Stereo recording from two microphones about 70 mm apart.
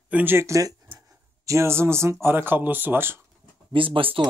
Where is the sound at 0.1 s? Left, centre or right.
Right.